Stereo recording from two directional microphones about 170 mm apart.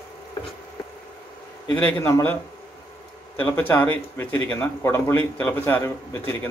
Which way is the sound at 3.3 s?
10° left (ahead or behind).